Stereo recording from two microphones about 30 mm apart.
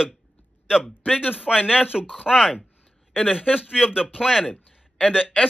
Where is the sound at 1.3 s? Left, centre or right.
Right.